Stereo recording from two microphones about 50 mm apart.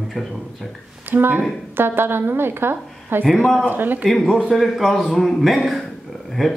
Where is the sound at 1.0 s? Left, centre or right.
Right.